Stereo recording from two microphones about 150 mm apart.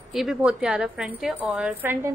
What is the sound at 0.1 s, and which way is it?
A woman's voice, centre (ahead or behind).